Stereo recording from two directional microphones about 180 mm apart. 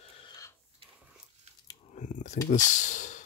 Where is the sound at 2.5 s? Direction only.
45° left (ahead or behind).